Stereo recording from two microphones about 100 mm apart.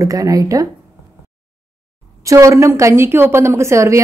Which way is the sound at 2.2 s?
30° right (ahead or behind).